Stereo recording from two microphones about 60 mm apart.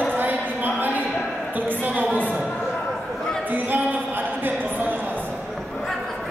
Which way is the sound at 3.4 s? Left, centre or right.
Right.